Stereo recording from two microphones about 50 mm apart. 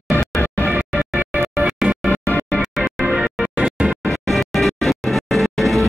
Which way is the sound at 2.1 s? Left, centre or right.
Left.